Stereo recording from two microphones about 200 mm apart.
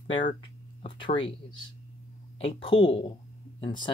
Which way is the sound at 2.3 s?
30° left (ahead or behind).